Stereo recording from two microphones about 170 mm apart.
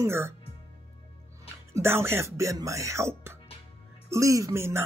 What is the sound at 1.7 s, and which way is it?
Speech, 15° right (ahead or behind).